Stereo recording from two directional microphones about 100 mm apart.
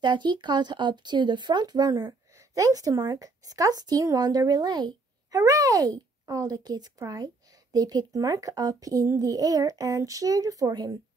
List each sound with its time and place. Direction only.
0.0 s speech: 50° right (ahead or behind)